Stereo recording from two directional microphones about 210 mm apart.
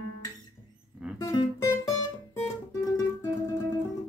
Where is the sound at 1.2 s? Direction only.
15° left (ahead or behind).